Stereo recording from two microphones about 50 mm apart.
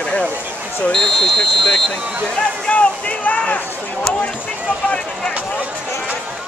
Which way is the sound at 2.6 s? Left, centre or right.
Left.